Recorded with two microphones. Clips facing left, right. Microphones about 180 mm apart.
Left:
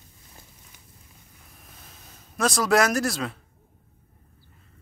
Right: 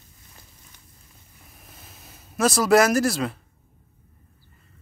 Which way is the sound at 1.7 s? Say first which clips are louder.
Right 2 dB; 5° right (ahead or behind).